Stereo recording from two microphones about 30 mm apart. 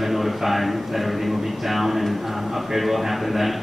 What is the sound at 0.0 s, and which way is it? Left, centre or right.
A man's voice, centre.